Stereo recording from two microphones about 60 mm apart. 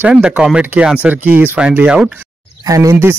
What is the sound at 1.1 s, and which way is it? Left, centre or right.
Mantra, right.